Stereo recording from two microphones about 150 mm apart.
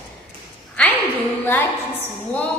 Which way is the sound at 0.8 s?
10° left (ahead or behind).